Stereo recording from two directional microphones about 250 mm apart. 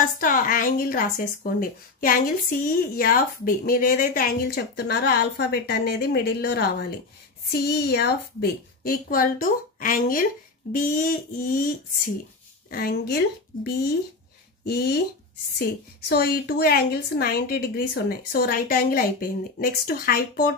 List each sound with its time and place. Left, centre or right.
0.0 s speech: left
15.6 s speech: left